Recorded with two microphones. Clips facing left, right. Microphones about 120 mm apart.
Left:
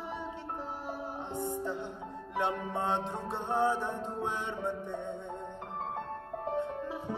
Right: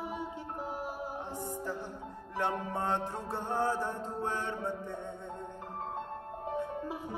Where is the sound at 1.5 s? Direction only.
25° left (ahead or behind).